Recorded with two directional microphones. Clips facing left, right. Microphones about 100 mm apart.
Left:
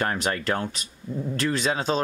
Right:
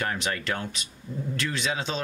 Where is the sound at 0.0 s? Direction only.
40° left (ahead or behind).